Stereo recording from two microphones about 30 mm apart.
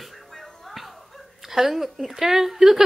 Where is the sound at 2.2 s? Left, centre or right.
Centre.